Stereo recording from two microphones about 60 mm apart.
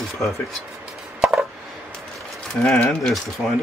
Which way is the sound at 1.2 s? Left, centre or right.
Centre.